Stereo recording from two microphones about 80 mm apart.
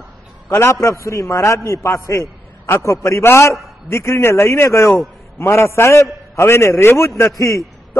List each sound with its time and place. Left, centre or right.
0.5 s a man's voice: left